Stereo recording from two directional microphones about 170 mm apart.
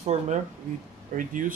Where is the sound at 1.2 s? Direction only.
50° right (ahead or behind).